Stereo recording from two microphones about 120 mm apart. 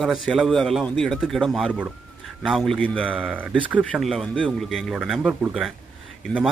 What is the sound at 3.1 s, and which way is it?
A man's voice, 10° right (ahead or behind).